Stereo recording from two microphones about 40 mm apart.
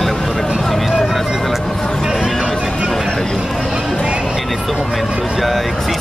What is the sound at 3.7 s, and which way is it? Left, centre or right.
Music, centre.